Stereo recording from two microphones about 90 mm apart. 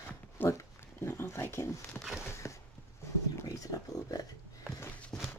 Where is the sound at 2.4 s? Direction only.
25° left (ahead or behind).